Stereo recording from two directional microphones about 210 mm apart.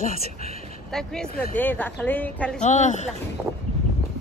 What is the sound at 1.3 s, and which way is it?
Speech, 45° left (ahead or behind).